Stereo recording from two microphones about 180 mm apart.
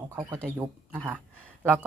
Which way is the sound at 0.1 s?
25° right (ahead or behind).